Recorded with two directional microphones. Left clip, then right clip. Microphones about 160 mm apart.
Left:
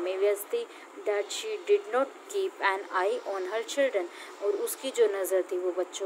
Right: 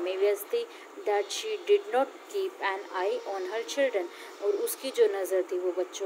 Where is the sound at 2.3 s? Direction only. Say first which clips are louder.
Left 3 dB; 20° left (ahead or behind).